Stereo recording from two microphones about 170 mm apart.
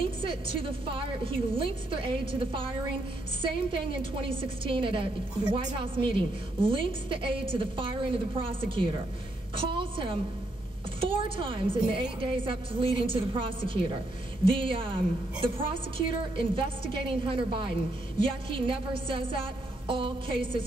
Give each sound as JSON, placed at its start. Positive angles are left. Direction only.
{"t": 0.2, "sound": "a woman's voice", "side_deg": -30}